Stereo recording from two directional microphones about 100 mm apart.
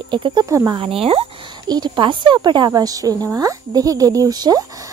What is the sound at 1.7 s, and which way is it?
Speech, 50° right (ahead or behind).